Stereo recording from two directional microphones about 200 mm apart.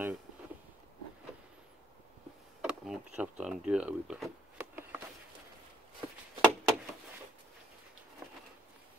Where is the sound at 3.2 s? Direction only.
5° right (ahead or behind).